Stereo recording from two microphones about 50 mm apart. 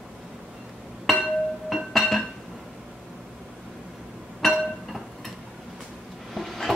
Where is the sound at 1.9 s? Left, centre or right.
Centre.